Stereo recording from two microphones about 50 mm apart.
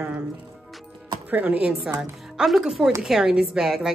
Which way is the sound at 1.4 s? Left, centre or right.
Right.